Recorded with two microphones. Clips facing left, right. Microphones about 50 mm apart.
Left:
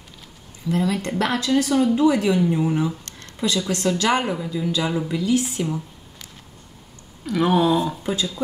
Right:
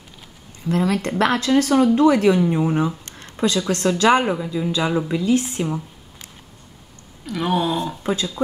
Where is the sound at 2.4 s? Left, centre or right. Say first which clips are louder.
Right 2 dB; right.